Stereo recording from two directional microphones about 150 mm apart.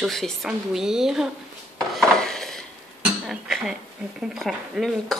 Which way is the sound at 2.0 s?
5° left (ahead or behind).